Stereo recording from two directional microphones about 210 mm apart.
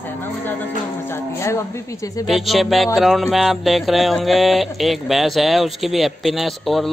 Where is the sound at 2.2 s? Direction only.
Centre (ahead or behind).